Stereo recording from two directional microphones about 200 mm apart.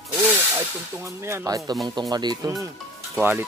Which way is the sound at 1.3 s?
15° right (ahead or behind).